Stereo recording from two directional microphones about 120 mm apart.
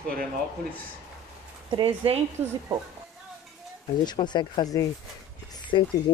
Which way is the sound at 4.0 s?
35° left (ahead or behind).